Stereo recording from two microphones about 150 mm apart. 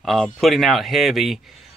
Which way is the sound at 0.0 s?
Centre (ahead or behind).